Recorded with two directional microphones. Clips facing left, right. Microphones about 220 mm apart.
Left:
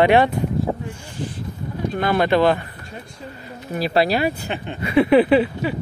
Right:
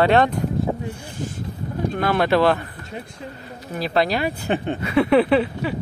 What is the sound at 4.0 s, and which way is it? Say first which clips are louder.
Speech: left 2 dB; 5° left (ahead or behind).